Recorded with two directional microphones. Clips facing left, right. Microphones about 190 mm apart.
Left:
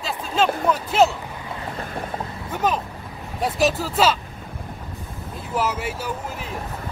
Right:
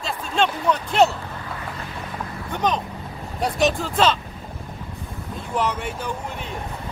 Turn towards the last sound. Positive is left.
turn(degrees=5)  # may be behind; listen again after turning